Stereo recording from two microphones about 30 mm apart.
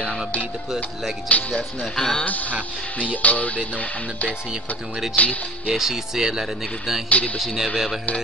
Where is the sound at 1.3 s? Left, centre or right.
Left.